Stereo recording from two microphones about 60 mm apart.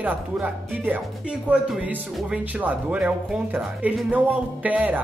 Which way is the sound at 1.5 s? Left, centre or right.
Centre.